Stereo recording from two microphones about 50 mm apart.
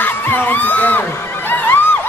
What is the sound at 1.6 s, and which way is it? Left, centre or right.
Music, left.